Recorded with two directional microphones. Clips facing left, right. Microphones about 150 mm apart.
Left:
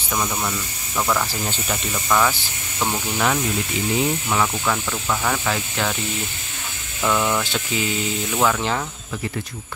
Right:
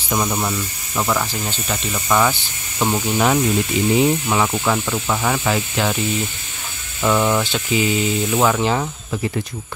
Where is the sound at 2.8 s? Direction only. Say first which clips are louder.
Right 4 dB; 20° right (ahead or behind).